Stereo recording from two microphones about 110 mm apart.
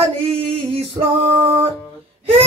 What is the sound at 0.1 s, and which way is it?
Male singing, 60° right (ahead or behind).